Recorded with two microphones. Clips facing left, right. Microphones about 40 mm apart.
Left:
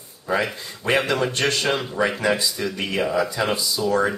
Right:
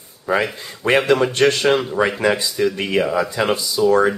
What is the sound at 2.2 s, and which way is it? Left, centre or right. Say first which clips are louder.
Speech: right 4 dB; centre.